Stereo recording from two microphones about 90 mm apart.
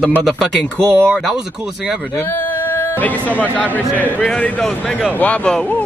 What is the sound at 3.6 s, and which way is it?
Speech, 15° left (ahead or behind).